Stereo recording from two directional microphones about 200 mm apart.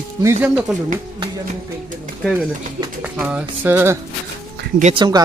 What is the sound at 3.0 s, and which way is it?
Speech, 5° right (ahead or behind).